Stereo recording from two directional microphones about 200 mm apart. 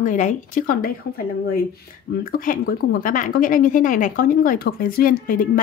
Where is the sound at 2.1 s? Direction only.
45° left (ahead or behind).